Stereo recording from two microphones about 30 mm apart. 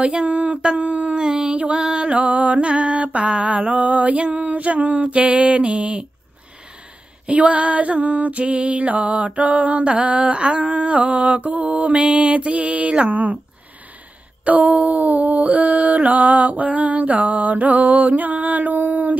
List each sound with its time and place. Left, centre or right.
0.0 s a sound: right
0.7 s music: right
1.2 s a sound: right
2.1 s music: right
2.6 s music: right
7.2 s music: right
9.8 s music: right
10.3 s a sound: right
10.6 s music: right
13.1 s speech: right
14.4 s mantra: right